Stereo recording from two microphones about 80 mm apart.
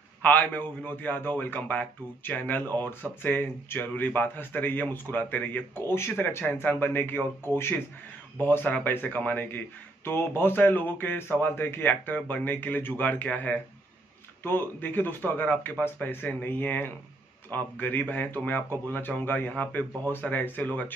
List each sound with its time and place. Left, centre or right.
0.2 s speech: left